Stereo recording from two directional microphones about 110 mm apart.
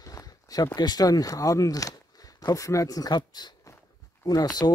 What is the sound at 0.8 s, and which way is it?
Speech, 35° left (ahead or behind).